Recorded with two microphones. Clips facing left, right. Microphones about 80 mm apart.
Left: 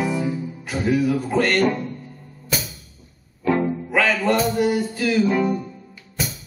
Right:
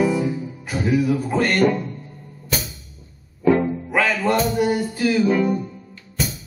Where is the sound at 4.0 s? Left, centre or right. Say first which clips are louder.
Even; centre.